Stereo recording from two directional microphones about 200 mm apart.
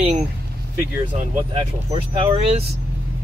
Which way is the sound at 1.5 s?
25° right (ahead or behind).